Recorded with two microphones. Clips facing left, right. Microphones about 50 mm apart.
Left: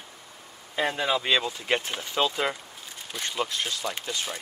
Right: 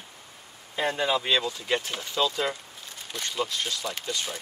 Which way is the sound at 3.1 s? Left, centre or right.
Centre.